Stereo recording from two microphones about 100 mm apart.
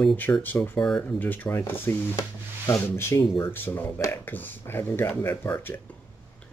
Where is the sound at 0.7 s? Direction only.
5° left (ahead or behind).